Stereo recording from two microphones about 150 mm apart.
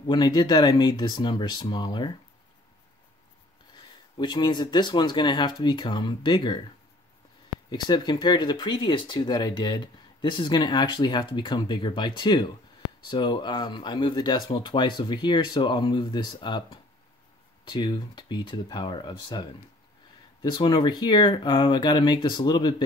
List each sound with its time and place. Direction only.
0.0 s speech: 30° left (ahead or behind)
3.7 s speech: 30° left (ahead or behind)
7.8 s speech: 30° left (ahead or behind)
20.5 s speech: 30° left (ahead or behind)